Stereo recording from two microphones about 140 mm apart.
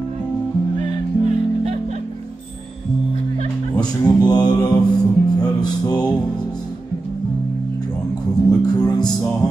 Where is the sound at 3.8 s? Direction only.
30° left (ahead or behind).